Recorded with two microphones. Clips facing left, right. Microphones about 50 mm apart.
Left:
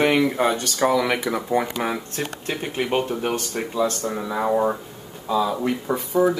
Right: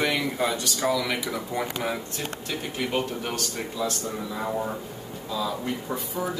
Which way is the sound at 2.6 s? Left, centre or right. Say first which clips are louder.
Left 5 dB; left.